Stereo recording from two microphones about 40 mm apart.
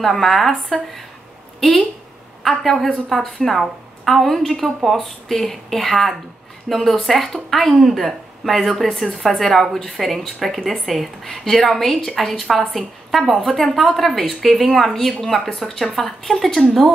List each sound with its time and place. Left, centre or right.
0.0 s a woman's voice: centre
1.6 s a woman's voice: left
2.5 s a woman's voice: centre